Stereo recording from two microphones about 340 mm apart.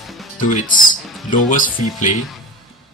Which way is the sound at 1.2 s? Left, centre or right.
Left.